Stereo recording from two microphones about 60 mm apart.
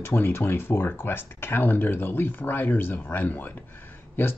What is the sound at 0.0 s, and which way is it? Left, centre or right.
Speech, left.